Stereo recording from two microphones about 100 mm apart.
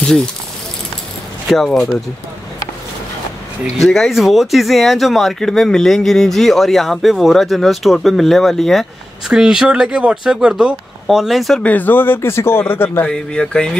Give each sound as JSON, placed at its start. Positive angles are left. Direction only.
{"t": 1.5, "sound": "speech", "side_deg": 0}
{"t": 3.7, "sound": "speech", "side_deg": 0}
{"t": 11.6, "sound": "speech", "side_deg": 15}
{"t": 13.1, "sound": "speech", "side_deg": 10}